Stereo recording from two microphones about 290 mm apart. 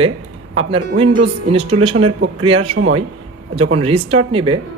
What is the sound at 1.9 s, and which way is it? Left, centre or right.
Speech, right.